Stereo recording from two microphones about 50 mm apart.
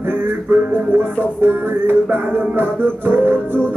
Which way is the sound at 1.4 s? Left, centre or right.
Right.